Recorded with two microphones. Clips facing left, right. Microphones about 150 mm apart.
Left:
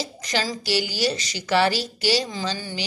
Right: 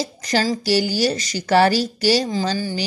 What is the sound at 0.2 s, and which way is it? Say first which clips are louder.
A woman's voice: right 7 dB; 40° right (ahead or behind).